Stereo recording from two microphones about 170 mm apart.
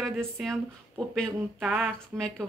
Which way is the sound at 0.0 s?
Centre (ahead or behind).